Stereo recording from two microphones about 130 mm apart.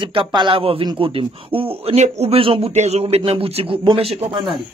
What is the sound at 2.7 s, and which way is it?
A man's voice, 55° right (ahead or behind).